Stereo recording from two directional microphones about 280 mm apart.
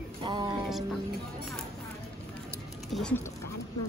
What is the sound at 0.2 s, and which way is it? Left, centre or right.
Music, centre.